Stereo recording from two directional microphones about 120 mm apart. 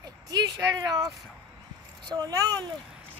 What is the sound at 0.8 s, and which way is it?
A child's voice, 30° right (ahead or behind).